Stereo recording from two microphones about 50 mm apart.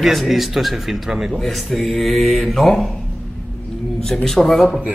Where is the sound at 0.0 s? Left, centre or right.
Centre.